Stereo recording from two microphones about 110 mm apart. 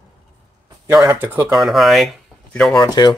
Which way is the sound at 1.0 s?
25° right (ahead or behind).